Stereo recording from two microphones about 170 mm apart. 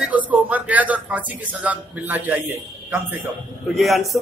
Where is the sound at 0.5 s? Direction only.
10° right (ahead or behind).